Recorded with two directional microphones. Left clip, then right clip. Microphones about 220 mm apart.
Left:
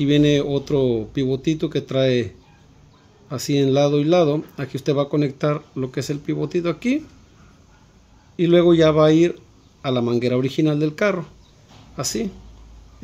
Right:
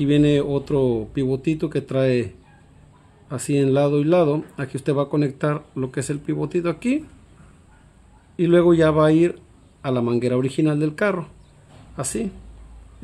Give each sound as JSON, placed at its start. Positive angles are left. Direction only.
{"t": 0.0, "sound": "speech", "side_deg": 5}
{"t": 8.4, "sound": "speech", "side_deg": 0}